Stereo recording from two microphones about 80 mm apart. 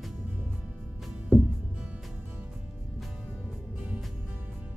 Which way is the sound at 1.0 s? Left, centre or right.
Centre.